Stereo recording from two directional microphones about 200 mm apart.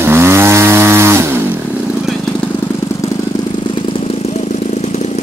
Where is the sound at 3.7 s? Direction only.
30° left (ahead or behind).